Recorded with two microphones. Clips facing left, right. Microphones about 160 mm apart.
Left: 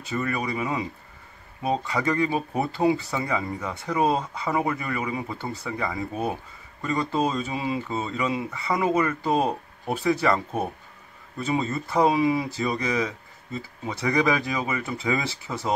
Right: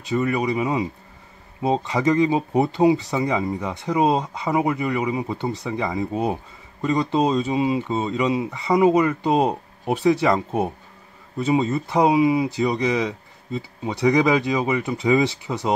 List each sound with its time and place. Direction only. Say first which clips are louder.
0.0 s speech: right 6 dB; 20° right (ahead or behind)